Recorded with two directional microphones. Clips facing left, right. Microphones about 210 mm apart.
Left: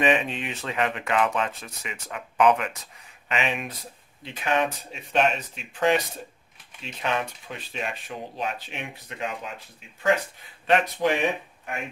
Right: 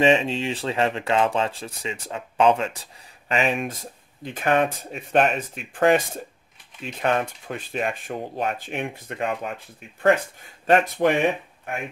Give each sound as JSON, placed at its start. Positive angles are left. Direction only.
{"t": 0.0, "sound": "speech", "side_deg": -30}